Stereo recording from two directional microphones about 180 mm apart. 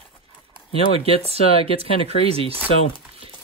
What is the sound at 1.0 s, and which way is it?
Speech, 35° right (ahead or behind).